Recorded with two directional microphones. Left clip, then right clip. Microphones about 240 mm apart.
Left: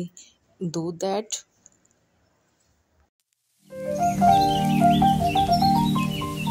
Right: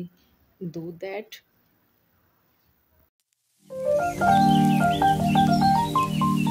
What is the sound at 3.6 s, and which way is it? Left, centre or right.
Music, centre.